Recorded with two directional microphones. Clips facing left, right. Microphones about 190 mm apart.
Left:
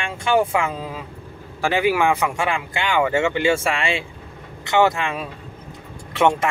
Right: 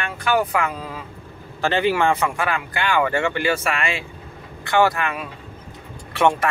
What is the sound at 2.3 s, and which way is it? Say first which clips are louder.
A man's voice: left 1 dB; 25° left (ahead or behind).